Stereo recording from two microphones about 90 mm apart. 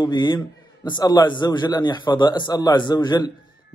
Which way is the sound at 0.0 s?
55° left (ahead or behind).